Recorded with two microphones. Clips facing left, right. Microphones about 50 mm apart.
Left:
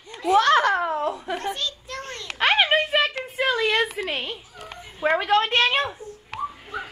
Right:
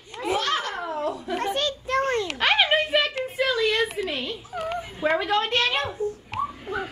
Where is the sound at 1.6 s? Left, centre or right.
Right.